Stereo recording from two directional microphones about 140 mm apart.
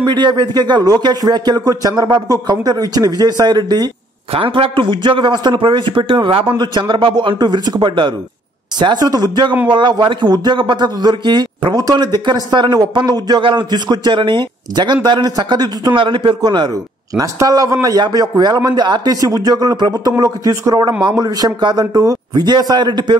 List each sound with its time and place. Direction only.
0.0 s a man's voice: 30° right (ahead or behind)
4.3 s a man's voice: 40° right (ahead or behind)